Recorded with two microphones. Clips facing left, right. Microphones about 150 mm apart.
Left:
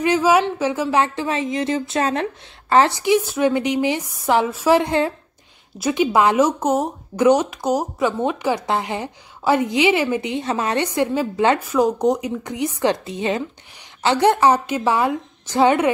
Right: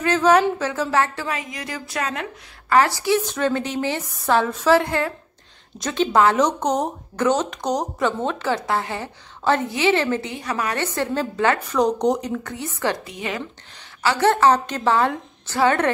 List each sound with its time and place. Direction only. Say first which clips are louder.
0.0 s a woman's voice: even; 10° left (ahead or behind)
11.7 s speech: left 2 dB; 5° left (ahead or behind)